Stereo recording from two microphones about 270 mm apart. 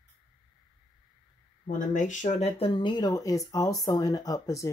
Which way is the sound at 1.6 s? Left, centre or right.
Left.